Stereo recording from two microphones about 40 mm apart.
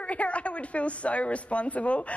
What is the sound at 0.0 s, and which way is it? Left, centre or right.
Speech, left.